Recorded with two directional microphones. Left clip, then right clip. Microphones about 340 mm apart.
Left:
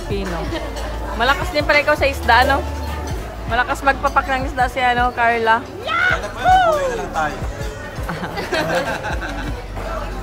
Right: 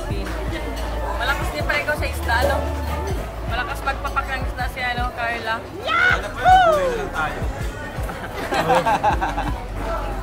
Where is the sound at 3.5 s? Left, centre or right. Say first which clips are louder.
Left 8 dB; centre.